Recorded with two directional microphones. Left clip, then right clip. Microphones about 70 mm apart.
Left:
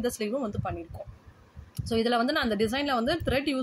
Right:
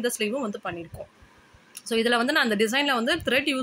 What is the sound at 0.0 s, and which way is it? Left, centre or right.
Speech, centre.